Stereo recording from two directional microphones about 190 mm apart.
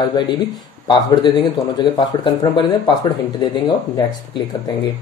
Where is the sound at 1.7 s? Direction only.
20° left (ahead or behind).